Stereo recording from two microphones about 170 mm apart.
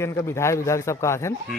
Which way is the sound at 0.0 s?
15° left (ahead or behind).